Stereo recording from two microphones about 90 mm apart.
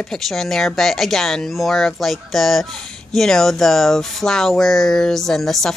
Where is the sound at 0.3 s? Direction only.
5° left (ahead or behind).